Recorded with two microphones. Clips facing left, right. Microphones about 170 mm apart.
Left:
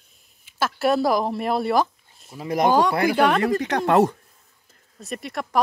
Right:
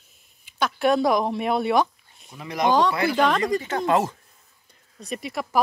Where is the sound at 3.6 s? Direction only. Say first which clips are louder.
Left 4 dB; 75° left (ahead or behind).